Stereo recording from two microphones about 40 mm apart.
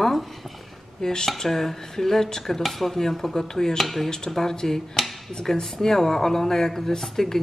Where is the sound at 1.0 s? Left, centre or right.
Centre.